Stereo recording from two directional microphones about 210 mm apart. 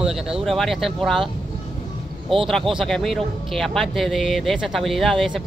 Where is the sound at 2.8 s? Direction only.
Centre (ahead or behind).